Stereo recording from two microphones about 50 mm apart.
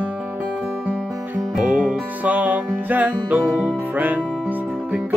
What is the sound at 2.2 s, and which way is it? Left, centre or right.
Music, right.